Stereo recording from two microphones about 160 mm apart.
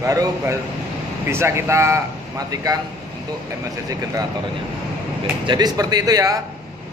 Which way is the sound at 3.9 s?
20° right (ahead or behind).